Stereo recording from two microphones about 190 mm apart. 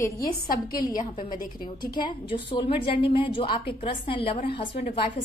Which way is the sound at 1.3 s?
45° left (ahead or behind).